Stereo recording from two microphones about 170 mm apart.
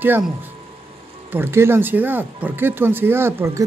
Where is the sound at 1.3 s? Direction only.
15° right (ahead or behind).